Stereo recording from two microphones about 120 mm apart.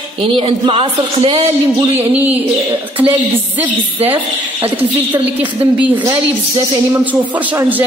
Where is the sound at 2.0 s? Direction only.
15° right (ahead or behind).